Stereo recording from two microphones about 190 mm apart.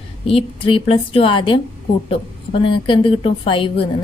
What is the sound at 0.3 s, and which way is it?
A woman's voice, 30° left (ahead or behind).